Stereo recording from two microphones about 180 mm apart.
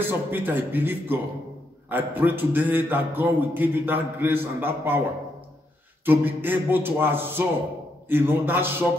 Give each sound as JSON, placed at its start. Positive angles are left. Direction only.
{"t": 0.0, "sound": "a man's voice", "side_deg": -10}
{"t": 6.0, "sound": "a man's voice", "side_deg": -10}